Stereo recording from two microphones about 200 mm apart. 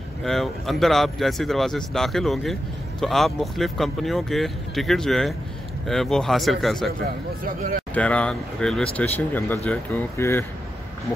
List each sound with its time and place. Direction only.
0.2 s speech: centre (ahead or behind)
7.4 s speech: 45° right (ahead or behind)
7.9 s speech: 5° left (ahead or behind)